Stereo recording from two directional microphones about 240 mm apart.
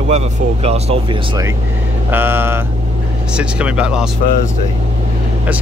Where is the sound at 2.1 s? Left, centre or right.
Centre.